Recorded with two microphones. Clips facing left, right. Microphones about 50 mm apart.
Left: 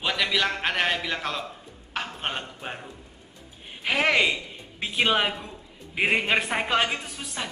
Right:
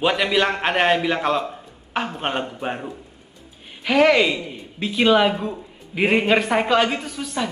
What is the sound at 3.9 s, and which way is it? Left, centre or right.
Speech, centre.